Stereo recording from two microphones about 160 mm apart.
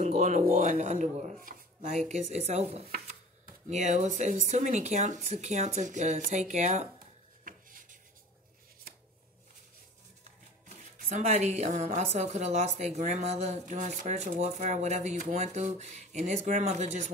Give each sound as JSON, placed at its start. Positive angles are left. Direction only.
{"t": 0.0, "sound": "a woman's voice", "side_deg": -45}
{"t": 7.4, "sound": "a sound", "side_deg": -60}
{"t": 10.7, "sound": "a woman's voice", "side_deg": -50}